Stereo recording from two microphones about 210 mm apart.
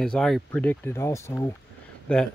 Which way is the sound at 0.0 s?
Centre (ahead or behind).